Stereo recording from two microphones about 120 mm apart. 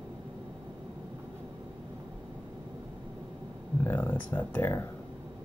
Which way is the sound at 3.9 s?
15° left (ahead or behind).